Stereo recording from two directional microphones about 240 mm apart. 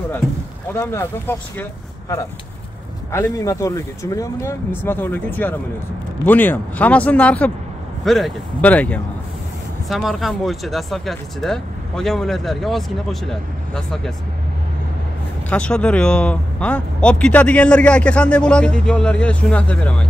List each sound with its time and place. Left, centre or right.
0.7 s speech: centre
15.5 s speech: centre